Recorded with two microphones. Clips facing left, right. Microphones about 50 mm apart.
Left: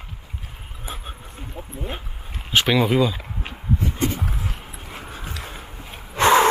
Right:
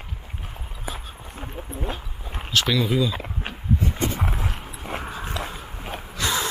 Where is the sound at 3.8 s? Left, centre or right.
Right.